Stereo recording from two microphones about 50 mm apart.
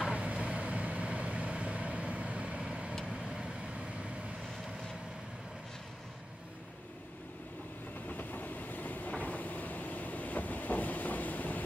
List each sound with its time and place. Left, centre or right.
0.1 s vehicle: right
8.1 s train: left